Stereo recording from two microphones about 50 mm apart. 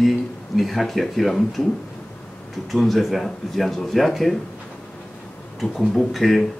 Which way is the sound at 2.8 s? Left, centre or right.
Centre.